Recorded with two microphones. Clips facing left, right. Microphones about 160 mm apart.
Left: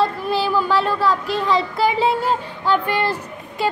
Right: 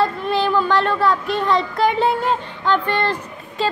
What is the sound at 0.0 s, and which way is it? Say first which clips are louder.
A child's voice: right 1 dB; 5° left (ahead or behind).